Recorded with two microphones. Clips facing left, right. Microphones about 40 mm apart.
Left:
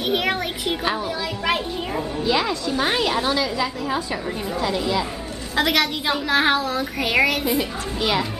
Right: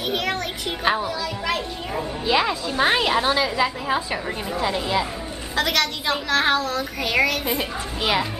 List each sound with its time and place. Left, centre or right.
0.0 s a child's voice: centre
2.2 s a woman's voice: centre
5.6 s speech: centre
7.4 s speech: centre